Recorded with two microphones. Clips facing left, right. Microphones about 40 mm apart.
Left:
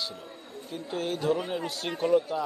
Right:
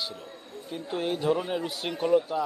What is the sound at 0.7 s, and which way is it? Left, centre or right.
Speech, centre.